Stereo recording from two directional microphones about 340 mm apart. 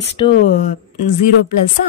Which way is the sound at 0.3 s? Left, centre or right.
Left.